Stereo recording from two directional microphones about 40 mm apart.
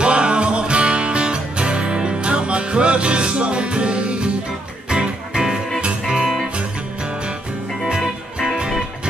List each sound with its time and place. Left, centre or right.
0.0 s music: right